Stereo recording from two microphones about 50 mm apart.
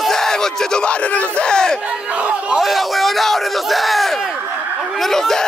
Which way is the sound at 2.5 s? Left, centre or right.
Centre.